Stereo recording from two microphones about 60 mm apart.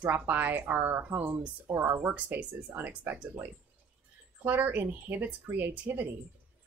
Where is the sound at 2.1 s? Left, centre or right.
Right.